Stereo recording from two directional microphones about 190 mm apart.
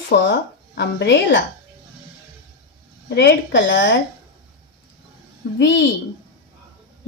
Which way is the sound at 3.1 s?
65° left (ahead or behind).